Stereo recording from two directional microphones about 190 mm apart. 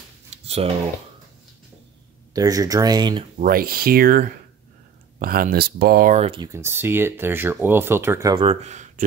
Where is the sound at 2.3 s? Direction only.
20° right (ahead or behind).